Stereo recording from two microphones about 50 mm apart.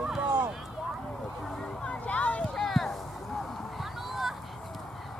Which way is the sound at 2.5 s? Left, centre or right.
Centre.